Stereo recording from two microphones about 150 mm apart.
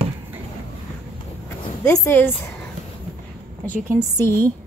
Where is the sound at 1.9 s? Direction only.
15° left (ahead or behind).